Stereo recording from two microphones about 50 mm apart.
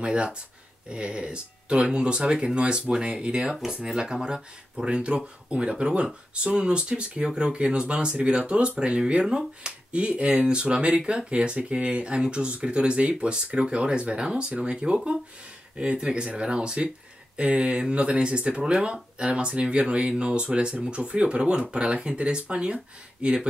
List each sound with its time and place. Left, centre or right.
0.0 s speech: right